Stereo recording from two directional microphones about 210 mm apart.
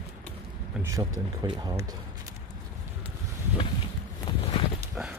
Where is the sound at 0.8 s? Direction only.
15° right (ahead or behind).